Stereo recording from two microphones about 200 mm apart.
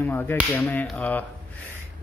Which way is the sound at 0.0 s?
10° left (ahead or behind).